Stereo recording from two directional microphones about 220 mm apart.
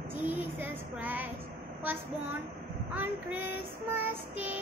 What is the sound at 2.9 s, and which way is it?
Child singing, 10° right (ahead or behind).